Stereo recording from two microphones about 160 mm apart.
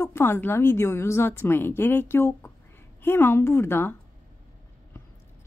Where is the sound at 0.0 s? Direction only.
15° left (ahead or behind).